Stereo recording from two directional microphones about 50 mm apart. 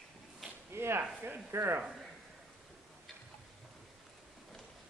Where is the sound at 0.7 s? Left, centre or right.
Right.